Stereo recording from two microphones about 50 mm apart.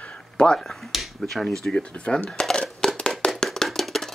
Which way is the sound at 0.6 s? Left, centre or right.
Centre.